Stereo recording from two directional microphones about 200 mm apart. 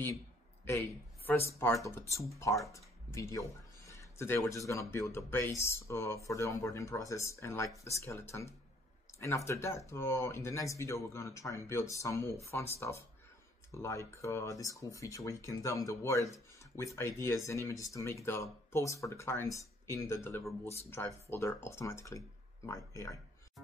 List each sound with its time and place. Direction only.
1.2 s speech: 10° left (ahead or behind)